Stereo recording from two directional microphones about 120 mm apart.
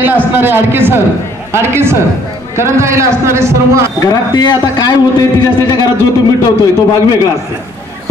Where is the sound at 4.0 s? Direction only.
30° left (ahead or behind).